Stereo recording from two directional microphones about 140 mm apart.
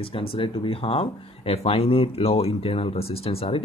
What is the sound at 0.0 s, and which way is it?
Speech, 40° left (ahead or behind).